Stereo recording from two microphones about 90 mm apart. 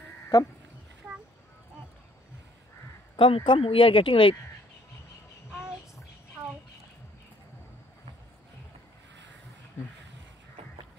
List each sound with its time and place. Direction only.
0.3 s speech: 40° left (ahead or behind)
3.2 s speech: 75° left (ahead or behind)